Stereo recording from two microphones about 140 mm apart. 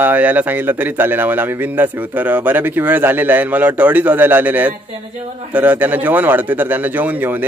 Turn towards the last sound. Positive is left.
turn(degrees=-15)  # may be behind; listen again after turning